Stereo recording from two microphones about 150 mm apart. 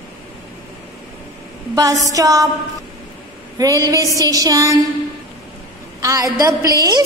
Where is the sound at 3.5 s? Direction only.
20° right (ahead or behind).